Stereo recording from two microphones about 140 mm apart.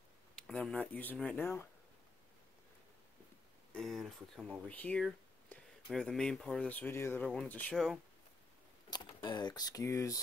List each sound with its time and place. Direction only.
0.4 s speech: 5° left (ahead or behind)
3.7 s speech: centre (ahead or behind)
8.9 s speech: 30° left (ahead or behind)